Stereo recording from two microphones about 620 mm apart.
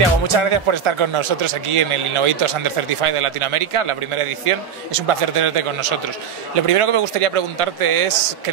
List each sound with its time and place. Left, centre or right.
0.3 s a man's voice: right